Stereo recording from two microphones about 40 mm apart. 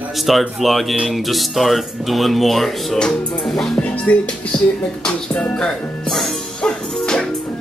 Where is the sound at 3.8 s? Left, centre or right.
Left.